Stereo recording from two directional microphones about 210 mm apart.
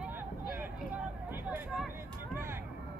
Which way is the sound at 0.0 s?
10° right (ahead or behind).